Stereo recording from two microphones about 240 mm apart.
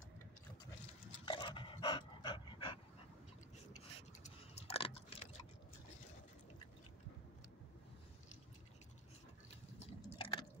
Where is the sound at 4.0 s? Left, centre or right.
Left.